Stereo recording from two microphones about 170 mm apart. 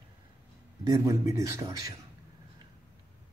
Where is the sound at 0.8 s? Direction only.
20° right (ahead or behind).